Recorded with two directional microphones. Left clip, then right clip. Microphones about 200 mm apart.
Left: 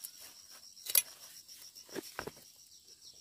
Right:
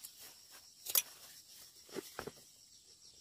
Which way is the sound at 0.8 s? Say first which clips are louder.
Left 3 dB; 5° left (ahead or behind).